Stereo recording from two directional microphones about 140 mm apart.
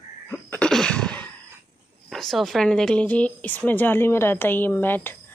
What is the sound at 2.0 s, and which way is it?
Speech, centre (ahead or behind).